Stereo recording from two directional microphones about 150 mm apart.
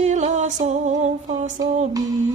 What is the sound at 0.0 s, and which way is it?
Music, 55° right (ahead or behind).